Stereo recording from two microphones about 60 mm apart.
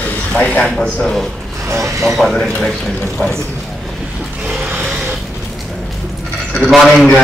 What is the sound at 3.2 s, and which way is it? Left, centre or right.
Speech, left.